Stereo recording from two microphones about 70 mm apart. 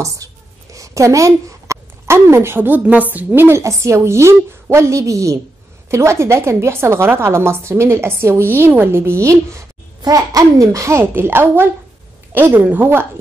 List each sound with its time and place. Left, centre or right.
0.2 s a sound: right
0.7 s a woman's voice: right
3.6 s a child's voice: right
10.0 s a child's voice: right